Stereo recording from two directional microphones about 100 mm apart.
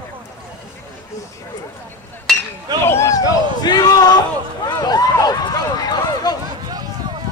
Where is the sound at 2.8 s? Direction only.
30° left (ahead or behind).